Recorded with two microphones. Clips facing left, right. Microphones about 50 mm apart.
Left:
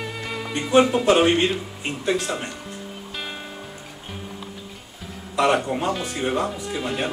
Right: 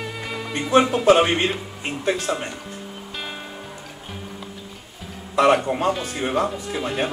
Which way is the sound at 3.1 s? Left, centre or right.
Centre.